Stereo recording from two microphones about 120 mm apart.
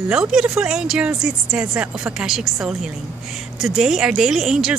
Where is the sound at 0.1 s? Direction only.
5° right (ahead or behind).